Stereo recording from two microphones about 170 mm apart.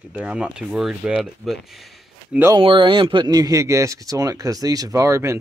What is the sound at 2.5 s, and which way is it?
Speech, 30° right (ahead or behind).